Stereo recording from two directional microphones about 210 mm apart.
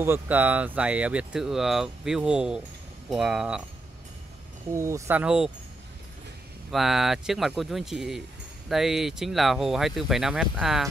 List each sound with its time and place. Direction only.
0.0 s speech: 10° right (ahead or behind)
4.7 s speech: 15° right (ahead or behind)
6.7 s speech: centre (ahead or behind)